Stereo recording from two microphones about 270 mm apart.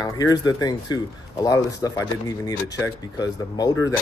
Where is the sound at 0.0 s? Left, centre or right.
Centre.